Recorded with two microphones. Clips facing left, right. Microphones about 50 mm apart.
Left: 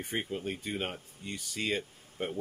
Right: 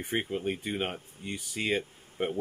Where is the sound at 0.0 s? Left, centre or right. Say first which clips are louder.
Right 4 dB; right.